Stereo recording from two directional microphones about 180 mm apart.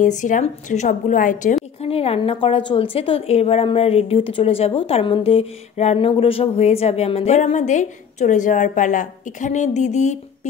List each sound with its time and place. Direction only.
0.0 s a woman's voice: 45° left (ahead or behind)
1.8 s a woman's voice: 35° left (ahead or behind)